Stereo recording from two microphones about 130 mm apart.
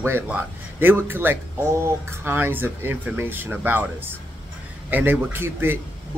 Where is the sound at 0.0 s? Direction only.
15° right (ahead or behind).